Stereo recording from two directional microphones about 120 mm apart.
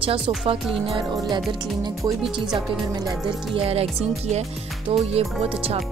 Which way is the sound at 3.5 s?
55° right (ahead or behind).